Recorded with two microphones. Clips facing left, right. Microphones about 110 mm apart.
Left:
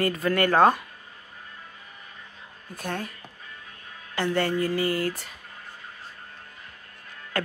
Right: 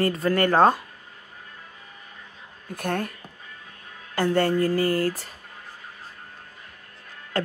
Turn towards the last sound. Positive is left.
turn(degrees=-30)  # may be behind; listen again after turning